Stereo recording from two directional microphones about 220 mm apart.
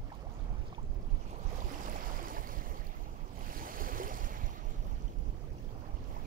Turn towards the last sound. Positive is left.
turn(degrees=-40)  # may be behind; listen again after turning